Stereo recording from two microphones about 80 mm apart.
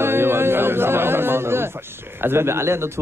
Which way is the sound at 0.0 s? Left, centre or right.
Right.